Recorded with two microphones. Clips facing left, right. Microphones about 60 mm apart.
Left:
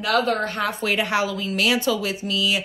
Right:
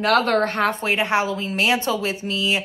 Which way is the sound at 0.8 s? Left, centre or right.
Right.